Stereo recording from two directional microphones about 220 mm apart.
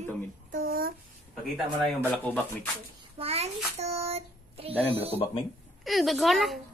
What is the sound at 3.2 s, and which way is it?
A child's voice, 25° right (ahead or behind).